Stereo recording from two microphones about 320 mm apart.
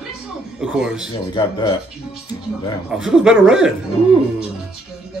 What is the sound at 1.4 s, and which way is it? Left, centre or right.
Speech, centre.